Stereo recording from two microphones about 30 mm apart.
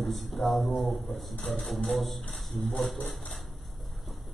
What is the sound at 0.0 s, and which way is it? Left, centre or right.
Speech, centre.